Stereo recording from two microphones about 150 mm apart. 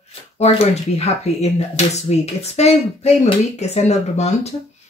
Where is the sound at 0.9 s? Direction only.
45° left (ahead or behind).